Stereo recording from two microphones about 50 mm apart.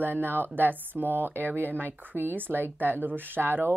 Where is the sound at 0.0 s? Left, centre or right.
Right.